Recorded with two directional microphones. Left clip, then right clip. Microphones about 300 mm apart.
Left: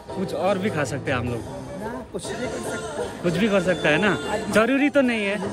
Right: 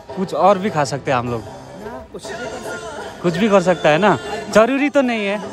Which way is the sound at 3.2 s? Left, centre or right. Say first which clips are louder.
Right 7 dB; centre.